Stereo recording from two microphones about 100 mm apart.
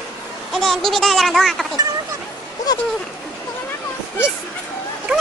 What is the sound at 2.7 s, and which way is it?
Speech, 40° left (ahead or behind).